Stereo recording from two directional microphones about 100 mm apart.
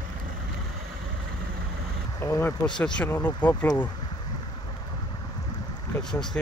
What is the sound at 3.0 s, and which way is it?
Speech, 20° left (ahead or behind).